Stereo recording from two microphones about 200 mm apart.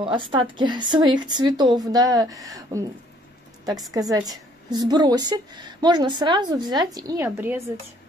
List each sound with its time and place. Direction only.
0.0 s a woman's voice: 25° right (ahead or behind)
3.9 s a woman's voice: 20° right (ahead or behind)